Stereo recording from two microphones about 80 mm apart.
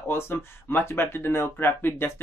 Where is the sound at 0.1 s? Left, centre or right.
Left.